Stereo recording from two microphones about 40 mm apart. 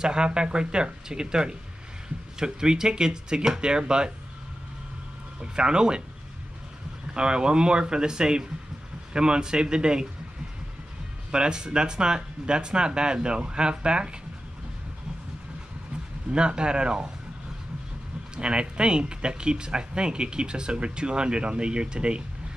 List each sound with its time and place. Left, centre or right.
0.0 s speech: right
5.4 s speech: right
7.2 s speech: right
11.3 s speech: right
16.3 s speech: right
18.3 s speech: right